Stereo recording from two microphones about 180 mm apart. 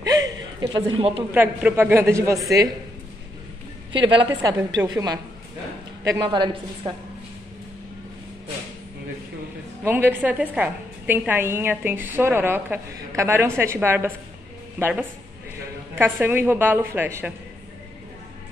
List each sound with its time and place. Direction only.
0.0 s a sound: 20° right (ahead or behind)
1.3 s a woman's voice: 10° right (ahead or behind)
3.9 s a woman's voice: 25° right (ahead or behind)
9.8 s a woman's voice: 10° right (ahead or behind)